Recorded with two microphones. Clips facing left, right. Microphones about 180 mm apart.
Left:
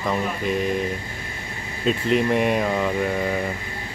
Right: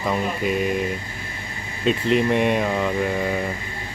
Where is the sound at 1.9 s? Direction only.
Centre (ahead or behind).